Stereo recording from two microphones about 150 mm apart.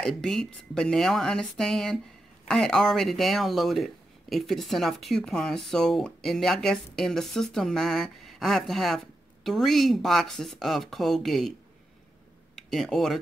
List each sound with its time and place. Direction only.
0.0 s speech: 5° left (ahead or behind)
12.5 s speech: centre (ahead or behind)